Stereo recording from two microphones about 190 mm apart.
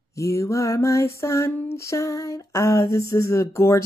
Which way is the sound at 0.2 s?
15° left (ahead or behind).